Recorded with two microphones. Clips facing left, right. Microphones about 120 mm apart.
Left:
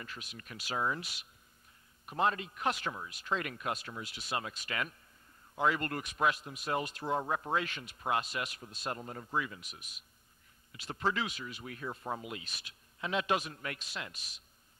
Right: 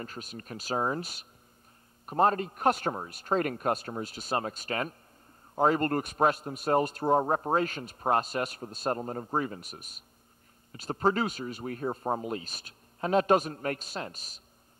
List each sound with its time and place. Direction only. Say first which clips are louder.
0.0 s a man's voice: right 7 dB; 40° right (ahead or behind)